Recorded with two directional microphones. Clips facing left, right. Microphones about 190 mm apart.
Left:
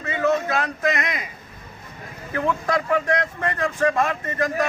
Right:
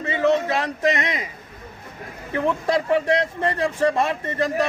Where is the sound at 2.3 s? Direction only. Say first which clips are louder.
Right 2 dB; 25° right (ahead or behind).